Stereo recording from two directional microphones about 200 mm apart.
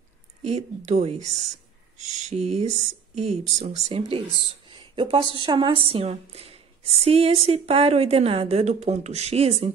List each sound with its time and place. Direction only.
0.4 s a woman's voice: 35° right (ahead or behind)